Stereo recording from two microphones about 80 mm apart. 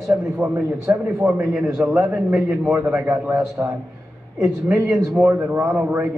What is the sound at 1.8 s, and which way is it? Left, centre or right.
Speech, centre.